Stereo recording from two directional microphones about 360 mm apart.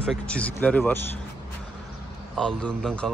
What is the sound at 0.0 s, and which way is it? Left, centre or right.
Speech, centre.